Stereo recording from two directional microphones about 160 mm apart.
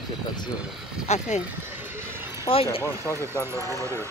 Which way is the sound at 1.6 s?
15° right (ahead or behind).